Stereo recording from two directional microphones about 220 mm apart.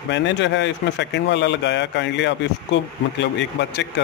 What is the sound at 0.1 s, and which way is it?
Speech, 55° left (ahead or behind).